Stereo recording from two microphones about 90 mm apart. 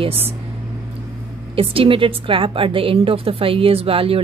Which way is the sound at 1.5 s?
90° right.